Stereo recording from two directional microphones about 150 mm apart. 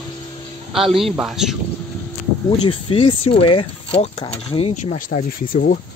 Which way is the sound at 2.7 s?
35° left (ahead or behind).